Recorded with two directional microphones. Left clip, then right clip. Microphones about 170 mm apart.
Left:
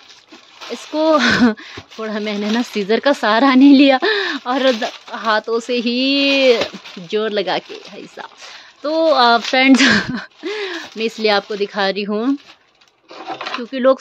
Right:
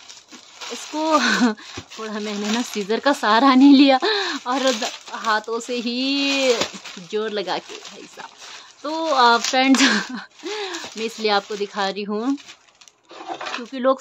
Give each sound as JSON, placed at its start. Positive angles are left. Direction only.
{"t": 0.7, "sound": "speech", "side_deg": 20}
{"t": 13.7, "sound": "speech", "side_deg": 15}